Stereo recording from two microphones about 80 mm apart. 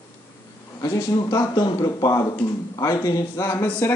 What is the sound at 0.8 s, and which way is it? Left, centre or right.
Speech, left.